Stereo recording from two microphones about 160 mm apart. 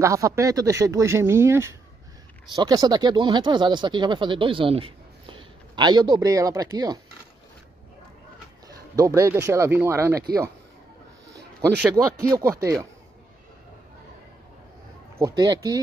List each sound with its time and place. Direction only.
0.0 s speech: 20° right (ahead or behind)
8.6 s speech: 20° right (ahead or behind)
11.9 s speech: 20° right (ahead or behind)
15.1 s speech: 20° right (ahead or behind)